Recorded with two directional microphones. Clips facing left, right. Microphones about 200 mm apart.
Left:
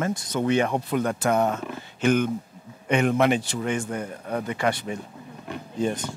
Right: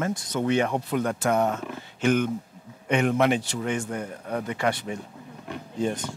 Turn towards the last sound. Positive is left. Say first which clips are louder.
# left 1 dB
turn(degrees=25)  # may be behind; listen again after turning